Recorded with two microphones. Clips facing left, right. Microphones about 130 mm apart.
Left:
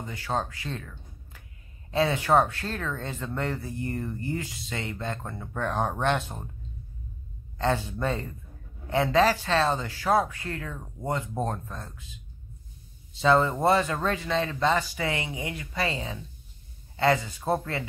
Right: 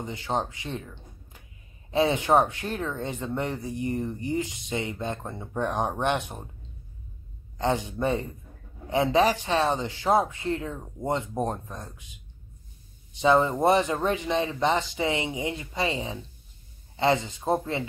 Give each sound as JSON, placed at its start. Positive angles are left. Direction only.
{"t": 0.0, "sound": "speech", "side_deg": -20}
{"t": 7.5, "sound": "a man's voice", "side_deg": -20}
{"t": 13.1, "sound": "speech", "side_deg": -20}